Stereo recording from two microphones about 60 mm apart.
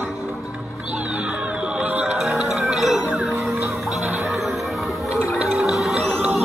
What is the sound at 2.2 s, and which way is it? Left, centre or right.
Music, centre.